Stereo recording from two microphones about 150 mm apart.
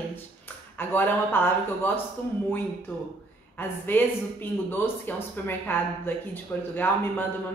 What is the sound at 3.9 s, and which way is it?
Speech, 15° left (ahead or behind).